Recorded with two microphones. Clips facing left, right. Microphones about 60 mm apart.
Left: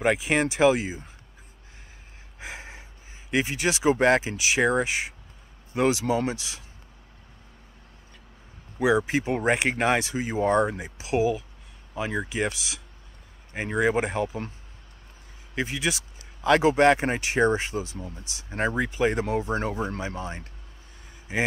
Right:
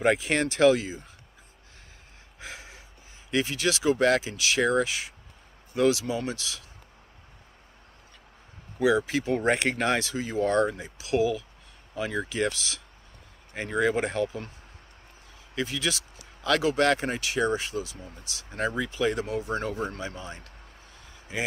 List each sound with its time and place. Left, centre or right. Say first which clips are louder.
0.0 s speech: left 1 dB; centre
0.7 s speech: left 2 dB; left
2.4 s a sound: left 3 dB; left
3.3 s speech: left 1 dB; left
8.7 s speech: left 1 dB; left
9.4 s speech: left 2 dB; centre
15.5 s speech: left 2 dB; left